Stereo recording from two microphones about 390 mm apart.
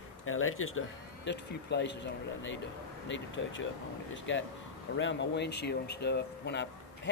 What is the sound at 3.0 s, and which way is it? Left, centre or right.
Speech, left.